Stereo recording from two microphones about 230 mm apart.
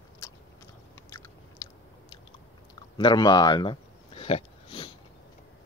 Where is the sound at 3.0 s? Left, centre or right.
Centre.